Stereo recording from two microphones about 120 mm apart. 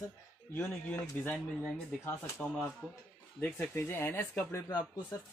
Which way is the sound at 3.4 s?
15° left (ahead or behind).